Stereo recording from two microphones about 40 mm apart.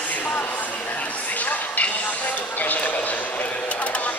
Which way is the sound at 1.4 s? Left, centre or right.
Left.